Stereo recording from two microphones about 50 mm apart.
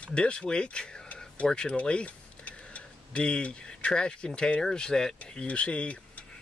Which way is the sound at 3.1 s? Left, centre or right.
Left.